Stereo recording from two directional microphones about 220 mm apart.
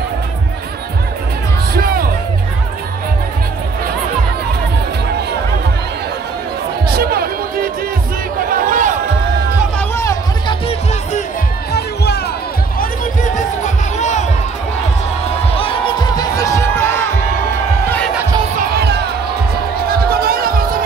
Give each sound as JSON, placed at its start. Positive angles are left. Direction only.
{"t": 6.9, "sound": "music", "side_deg": -45}
{"t": 8.5, "sound": "a sound", "side_deg": -40}
{"t": 9.8, "sound": "hubbub", "side_deg": 10}
{"t": 11.7, "sound": "music", "side_deg": 50}
{"t": 13.9, "sound": "music", "side_deg": 30}
{"t": 15.5, "sound": "music", "side_deg": 25}
{"t": 18.6, "sound": "music", "side_deg": -45}